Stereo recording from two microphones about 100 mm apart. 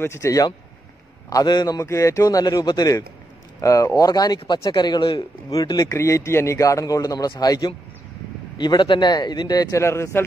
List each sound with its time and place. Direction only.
0.0 s speech: 30° left (ahead or behind)
1.3 s a man's voice: 45° left (ahead or behind)
1.8 s speech: 30° left (ahead or behind); by 5.6 s 50° left (ahead or behind)
5.6 s a man's voice: 35° left (ahead or behind)